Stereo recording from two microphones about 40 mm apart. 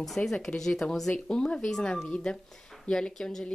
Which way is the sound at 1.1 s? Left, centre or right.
Left.